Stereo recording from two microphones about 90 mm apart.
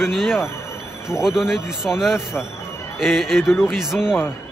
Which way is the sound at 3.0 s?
Centre (ahead or behind).